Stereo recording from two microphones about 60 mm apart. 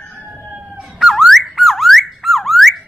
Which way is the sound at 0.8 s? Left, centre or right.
Centre.